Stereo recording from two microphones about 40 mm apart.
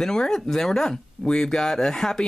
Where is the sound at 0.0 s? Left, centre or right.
Centre.